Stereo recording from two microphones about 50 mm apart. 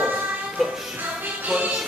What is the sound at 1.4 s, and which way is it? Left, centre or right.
Music, right.